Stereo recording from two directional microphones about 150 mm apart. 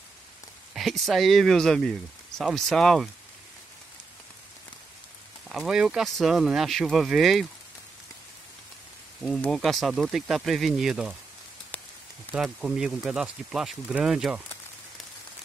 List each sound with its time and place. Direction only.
0.7 s speech: centre (ahead or behind)
5.5 s speech: centre (ahead or behind)
9.2 s speech: centre (ahead or behind)
12.3 s speech: centre (ahead or behind)